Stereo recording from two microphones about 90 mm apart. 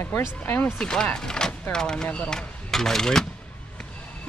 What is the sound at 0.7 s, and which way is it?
Speech, 5° left (ahead or behind).